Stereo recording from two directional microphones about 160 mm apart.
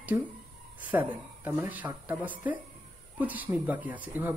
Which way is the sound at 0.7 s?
10° right (ahead or behind).